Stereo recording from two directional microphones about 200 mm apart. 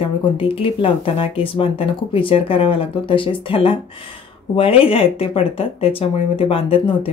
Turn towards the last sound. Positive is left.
turn(degrees=25)  # may be behind; listen again after turning